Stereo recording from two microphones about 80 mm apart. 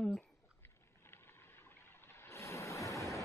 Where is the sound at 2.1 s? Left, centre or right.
Left.